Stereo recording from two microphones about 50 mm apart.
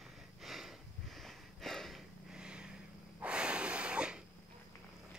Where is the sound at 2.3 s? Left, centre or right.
Centre.